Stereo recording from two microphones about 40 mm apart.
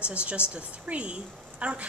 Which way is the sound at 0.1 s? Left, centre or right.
Right.